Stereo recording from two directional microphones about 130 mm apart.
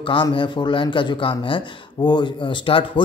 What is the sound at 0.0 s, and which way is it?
Speech, 40° left (ahead or behind).